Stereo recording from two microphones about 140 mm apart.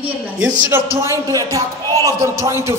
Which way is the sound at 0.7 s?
20° right (ahead or behind).